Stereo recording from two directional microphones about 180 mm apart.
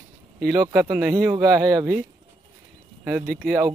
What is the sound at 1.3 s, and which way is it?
Speech, 20° right (ahead or behind).